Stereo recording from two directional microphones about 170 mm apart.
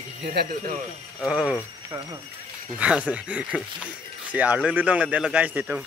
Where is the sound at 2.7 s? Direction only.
5° right (ahead or behind).